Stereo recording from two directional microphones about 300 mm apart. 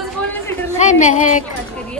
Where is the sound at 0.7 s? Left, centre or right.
Left.